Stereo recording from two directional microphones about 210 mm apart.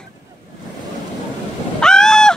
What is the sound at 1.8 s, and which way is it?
Goose, 5° left (ahead or behind).